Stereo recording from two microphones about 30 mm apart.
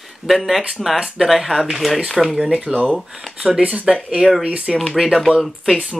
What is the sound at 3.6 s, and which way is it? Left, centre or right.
Speech, right.